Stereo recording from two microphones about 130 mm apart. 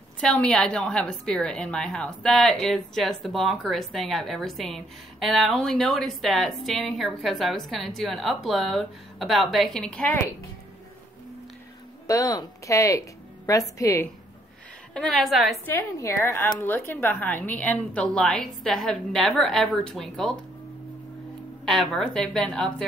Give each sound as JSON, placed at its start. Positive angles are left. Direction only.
{"t": 0.2, "sound": "a woman's voice", "side_deg": 5}
{"t": 12.1, "sound": "speech", "side_deg": 25}
{"t": 15.0, "sound": "a woman's voice", "side_deg": 0}
{"t": 15.6, "sound": "a woman's voice", "side_deg": 20}
{"t": 21.6, "sound": "a woman's voice", "side_deg": 0}